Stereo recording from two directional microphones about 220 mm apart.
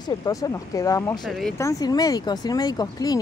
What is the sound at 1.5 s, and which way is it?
Speech, 15° left (ahead or behind).